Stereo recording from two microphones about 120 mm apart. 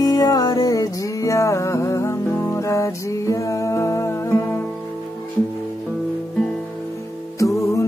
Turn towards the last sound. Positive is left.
turn(degrees=25)  # may be behind; listen again after turning